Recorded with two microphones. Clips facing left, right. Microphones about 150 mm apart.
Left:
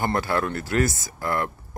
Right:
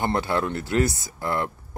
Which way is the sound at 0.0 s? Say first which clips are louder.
Even; 20° right (ahead or behind).